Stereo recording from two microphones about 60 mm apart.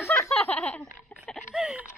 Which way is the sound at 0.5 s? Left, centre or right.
Left.